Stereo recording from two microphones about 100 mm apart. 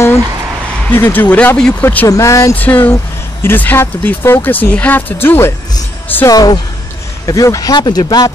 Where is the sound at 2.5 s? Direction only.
20° left (ahead or behind).